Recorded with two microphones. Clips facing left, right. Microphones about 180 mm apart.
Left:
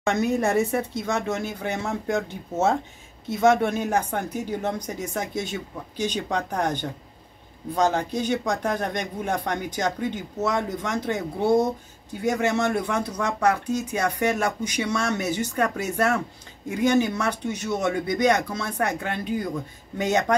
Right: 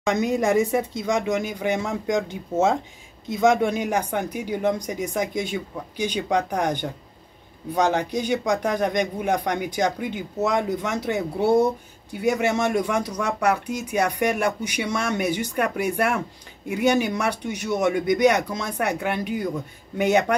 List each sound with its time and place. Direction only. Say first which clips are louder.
0.0 s speech: right 1 dB; 10° right (ahead or behind)
7.7 s speech: right 1 dB; 65° right (ahead or behind)
8.1 s speech: right 2 dB; 10° right (ahead or behind)